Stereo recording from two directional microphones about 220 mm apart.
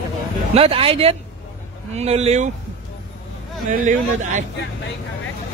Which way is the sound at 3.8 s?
35° right (ahead or behind).